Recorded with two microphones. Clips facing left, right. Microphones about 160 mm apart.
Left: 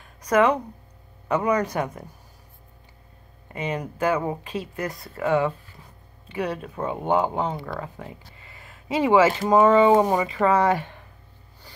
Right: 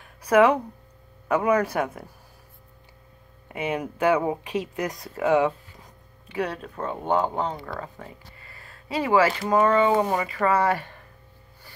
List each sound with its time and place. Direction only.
0.2 s speech: 10° right (ahead or behind)
3.4 s speech: 10° right (ahead or behind)
6.4 s speech: 5° left (ahead or behind)
8.5 s speech: 20° left (ahead or behind)
10.8 s a sound: centre (ahead or behind)